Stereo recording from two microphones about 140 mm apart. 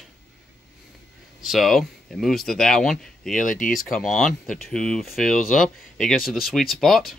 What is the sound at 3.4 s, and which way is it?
Speech, 70° left (ahead or behind).